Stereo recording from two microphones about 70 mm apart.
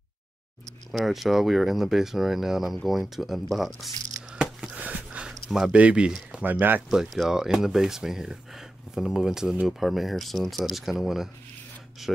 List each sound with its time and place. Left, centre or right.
0.9 s speech: centre
4.4 s a sound: centre
5.3 s a sound: centre
5.8 s speech: centre
6.6 s speech: right
7.2 s speech: centre